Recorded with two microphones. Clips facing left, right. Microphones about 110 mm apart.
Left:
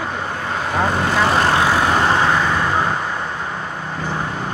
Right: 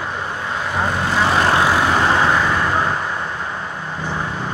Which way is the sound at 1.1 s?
40° left (ahead or behind).